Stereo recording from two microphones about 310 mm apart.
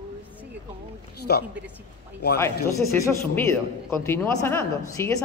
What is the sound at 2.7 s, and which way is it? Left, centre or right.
A woman's voice, centre.